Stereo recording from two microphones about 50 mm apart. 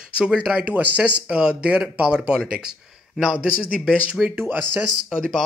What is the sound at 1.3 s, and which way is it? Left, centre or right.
A man's voice, right.